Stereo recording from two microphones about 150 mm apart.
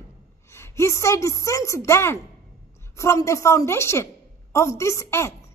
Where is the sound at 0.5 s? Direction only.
15° left (ahead or behind).